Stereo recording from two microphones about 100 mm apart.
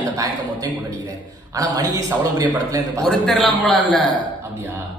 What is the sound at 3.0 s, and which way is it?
Speech, 5° left (ahead or behind).